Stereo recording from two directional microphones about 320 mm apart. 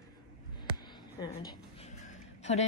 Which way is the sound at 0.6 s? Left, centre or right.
Centre.